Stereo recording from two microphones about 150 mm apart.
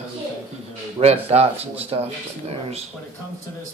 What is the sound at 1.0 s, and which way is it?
Speech, 45° right (ahead or behind).